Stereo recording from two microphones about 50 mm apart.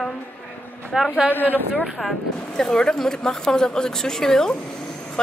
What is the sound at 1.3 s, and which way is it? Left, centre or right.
Speech, left.